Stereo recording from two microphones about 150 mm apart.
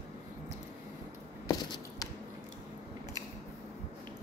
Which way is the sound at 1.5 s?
25° left (ahead or behind).